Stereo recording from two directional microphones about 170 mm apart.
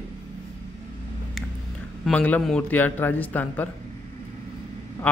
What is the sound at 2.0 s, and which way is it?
A man's voice, 10° left (ahead or behind).